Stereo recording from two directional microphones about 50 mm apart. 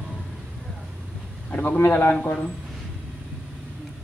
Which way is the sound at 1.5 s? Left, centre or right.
Left.